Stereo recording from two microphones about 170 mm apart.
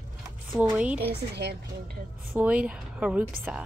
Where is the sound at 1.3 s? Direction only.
75° right (ahead or behind).